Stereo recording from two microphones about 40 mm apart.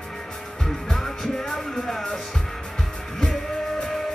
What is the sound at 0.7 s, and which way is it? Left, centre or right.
Music, centre.